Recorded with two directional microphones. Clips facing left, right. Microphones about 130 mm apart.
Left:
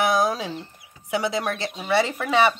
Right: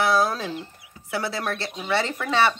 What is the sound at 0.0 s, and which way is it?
Speech, 15° left (ahead or behind).